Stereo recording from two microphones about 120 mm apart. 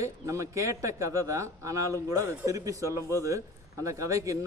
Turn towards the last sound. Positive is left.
turn(degrees=-25)  # may be behind; listen again after turning